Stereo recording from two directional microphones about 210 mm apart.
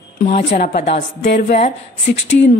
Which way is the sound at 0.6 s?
45° left (ahead or behind).